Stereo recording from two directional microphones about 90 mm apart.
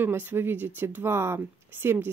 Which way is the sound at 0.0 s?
20° right (ahead or behind).